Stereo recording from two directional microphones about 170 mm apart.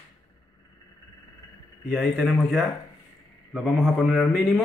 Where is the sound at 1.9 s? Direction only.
5° left (ahead or behind).